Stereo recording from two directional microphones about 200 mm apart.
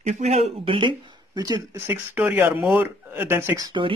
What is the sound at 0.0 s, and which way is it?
Speech, 35° right (ahead or behind).